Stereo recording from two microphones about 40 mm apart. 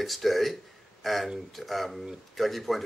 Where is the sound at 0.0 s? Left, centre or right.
Centre.